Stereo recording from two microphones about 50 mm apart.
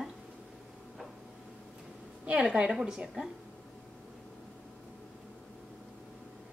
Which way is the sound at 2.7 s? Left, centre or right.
Centre.